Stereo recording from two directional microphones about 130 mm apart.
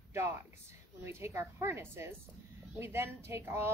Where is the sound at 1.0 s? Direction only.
20° right (ahead or behind).